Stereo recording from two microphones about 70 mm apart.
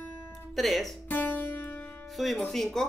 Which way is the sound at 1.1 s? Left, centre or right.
Left.